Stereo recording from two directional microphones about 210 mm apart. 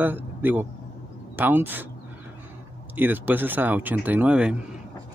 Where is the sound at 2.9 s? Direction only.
10° right (ahead or behind).